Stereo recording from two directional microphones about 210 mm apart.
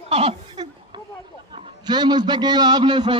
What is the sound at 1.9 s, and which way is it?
A woman's voice, 20° right (ahead or behind).